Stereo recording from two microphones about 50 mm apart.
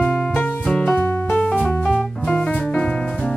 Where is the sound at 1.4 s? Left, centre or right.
Left.